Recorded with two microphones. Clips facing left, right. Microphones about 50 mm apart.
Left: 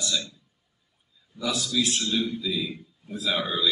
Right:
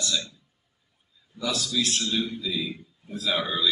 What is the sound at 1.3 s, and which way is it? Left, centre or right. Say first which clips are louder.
A man's voice: left 1 dB; centre.